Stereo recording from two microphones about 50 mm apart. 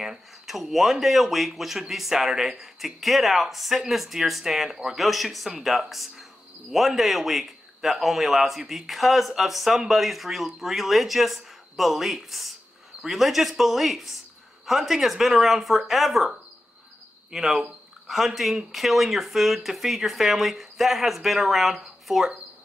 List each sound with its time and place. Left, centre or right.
0.0 s speech: centre
4.6 s speech: centre
4.9 s speech: centre